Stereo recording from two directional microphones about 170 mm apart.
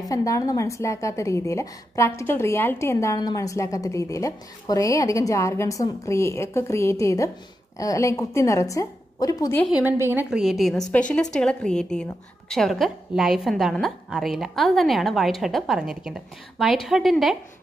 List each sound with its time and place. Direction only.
0.1 s a woman's voice: 20° left (ahead or behind)
9.8 s a woman's voice: 10° right (ahead or behind)